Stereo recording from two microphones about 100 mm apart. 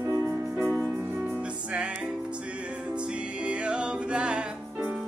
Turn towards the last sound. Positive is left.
turn(degrees=-10)  # may be behind; listen again after turning